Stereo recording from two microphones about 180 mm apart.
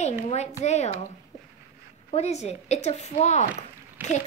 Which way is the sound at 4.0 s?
10° right (ahead or behind).